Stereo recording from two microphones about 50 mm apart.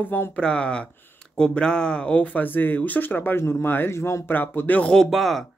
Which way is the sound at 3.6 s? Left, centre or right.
Left.